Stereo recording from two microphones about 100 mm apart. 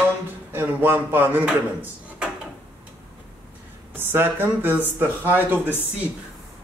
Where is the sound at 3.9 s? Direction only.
20° right (ahead or behind).